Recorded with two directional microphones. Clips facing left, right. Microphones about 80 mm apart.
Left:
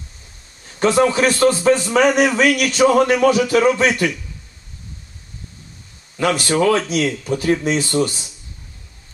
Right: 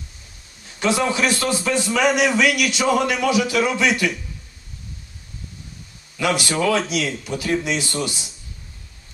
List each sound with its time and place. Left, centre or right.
0.7 s a man's voice: left
6.1 s a man's voice: left